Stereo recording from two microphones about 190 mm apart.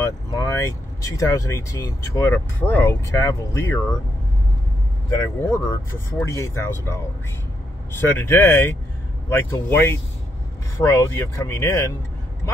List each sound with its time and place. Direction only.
0.0 s speech: 15° left (ahead or behind)
5.4 s speech: 15° left (ahead or behind)
8.0 s speech: 10° left (ahead or behind)